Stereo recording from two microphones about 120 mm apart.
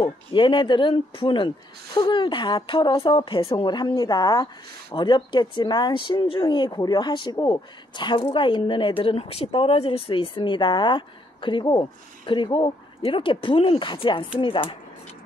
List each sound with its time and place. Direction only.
0.0 s speech: 45° left (ahead or behind)